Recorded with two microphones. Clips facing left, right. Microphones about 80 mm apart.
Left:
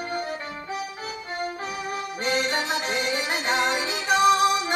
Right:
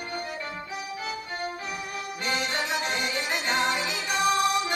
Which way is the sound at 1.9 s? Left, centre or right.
Left.